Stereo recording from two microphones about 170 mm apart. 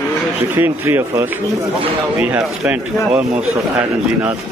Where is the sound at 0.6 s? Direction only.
15° right (ahead or behind).